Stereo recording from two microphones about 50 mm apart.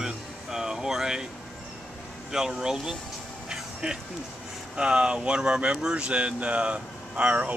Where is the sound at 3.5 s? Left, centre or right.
Centre.